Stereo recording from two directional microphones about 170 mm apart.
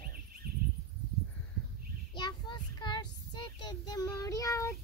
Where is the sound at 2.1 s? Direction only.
25° left (ahead or behind).